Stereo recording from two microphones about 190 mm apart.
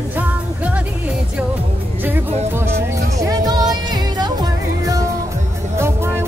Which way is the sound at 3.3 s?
20° right (ahead or behind).